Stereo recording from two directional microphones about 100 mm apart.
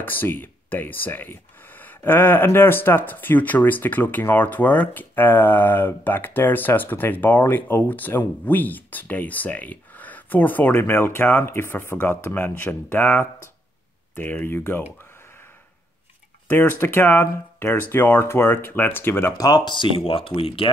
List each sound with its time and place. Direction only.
0.0 s speech: 20° left (ahead or behind)
16.4 s speech: 20° left (ahead or behind)
19.3 s speech: 40° left (ahead or behind); by 20.7 s 65° left (ahead or behind)